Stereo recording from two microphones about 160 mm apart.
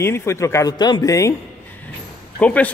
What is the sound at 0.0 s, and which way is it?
Speech, 15° left (ahead or behind).